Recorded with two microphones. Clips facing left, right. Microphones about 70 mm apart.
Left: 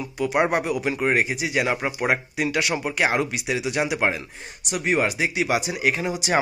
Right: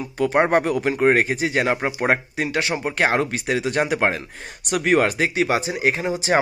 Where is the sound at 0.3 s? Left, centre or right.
Right.